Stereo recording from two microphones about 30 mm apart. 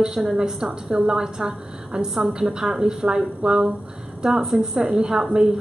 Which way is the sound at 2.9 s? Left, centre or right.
Centre.